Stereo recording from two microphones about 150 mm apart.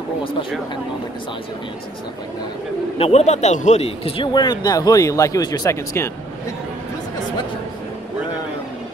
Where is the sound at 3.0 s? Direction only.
45° left (ahead or behind); by 6.1 s 20° left (ahead or behind).